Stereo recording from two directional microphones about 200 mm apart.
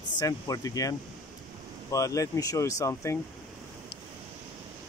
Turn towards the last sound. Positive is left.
turn(degrees=15)  # may be behind; listen again after turning